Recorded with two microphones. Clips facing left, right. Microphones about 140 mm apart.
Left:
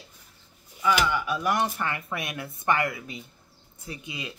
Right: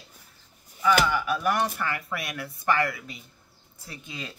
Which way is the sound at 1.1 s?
20° left (ahead or behind).